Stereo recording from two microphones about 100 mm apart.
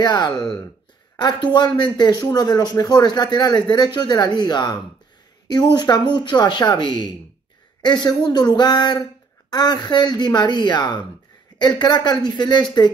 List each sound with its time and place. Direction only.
0.0 s speech: 50° left (ahead or behind)